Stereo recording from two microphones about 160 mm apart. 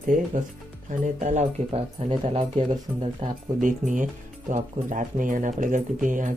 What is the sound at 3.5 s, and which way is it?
Speech, 55° right (ahead or behind).